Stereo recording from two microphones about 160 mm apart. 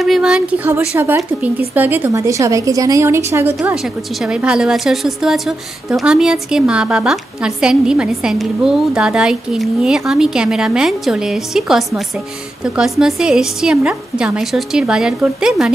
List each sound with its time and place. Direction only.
0.0 s a woman's voice: 5° right (ahead or behind)
3.6 s a woman's voice: centre (ahead or behind)